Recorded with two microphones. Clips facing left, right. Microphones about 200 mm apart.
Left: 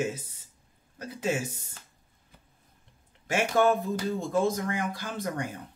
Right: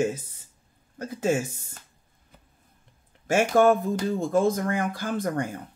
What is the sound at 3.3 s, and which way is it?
Speech, 45° right (ahead or behind).